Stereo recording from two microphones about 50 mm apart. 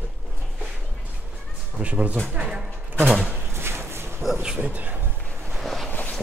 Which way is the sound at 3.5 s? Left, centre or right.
Right.